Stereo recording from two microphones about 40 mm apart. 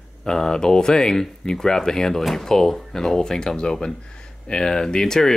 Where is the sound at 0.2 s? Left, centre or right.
Centre.